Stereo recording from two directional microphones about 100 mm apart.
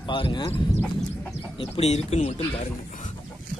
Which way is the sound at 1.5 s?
80° left.